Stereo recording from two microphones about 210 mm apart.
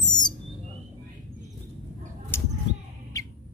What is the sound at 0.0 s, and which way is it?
Owl, 20° left (ahead or behind).